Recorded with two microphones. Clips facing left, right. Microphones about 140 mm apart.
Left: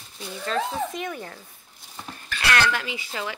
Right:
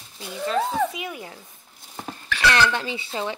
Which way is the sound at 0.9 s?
10° right (ahead or behind).